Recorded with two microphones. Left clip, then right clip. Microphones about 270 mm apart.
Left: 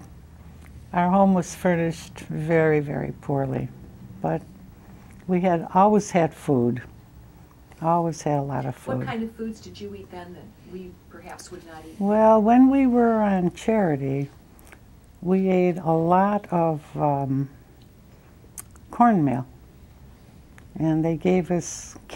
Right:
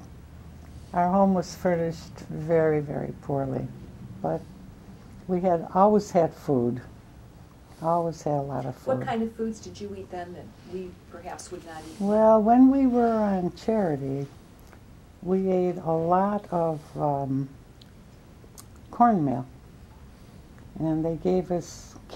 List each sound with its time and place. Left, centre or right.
0.9 s speech: left
5.3 s speech: left
7.8 s speech: left
9.4 s a woman's voice: centre
12.0 s speech: left
15.2 s speech: left
18.9 s speech: left
20.7 s speech: left
21.2 s speech: left
21.5 s speech: left